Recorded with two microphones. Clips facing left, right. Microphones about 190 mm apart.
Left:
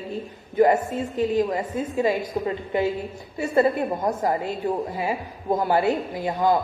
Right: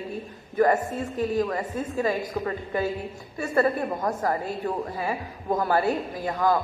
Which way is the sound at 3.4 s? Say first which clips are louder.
Left 3 dB; 20° left (ahead or behind).